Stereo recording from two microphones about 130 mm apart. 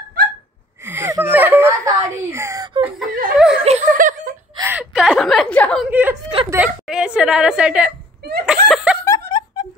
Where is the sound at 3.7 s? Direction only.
80° right.